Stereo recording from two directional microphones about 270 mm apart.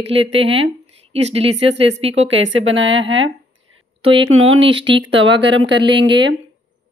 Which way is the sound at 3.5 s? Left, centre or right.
Right.